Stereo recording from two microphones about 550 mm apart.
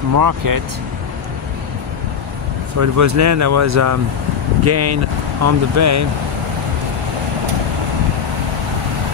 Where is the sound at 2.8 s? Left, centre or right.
Right.